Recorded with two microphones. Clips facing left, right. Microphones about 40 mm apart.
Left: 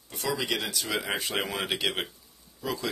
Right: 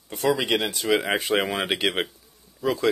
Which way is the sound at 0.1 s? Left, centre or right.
Right.